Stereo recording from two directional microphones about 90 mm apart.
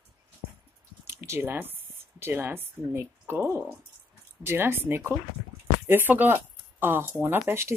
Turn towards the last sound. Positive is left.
turn(degrees=-30)  # may be behind; listen again after turning